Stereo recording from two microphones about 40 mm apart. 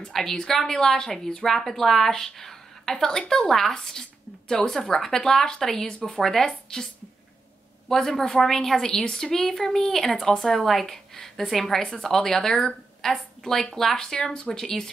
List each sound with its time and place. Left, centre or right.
0.1 s a woman's voice: centre
6.1 s a woman's voice: centre
7.9 s a woman's voice: centre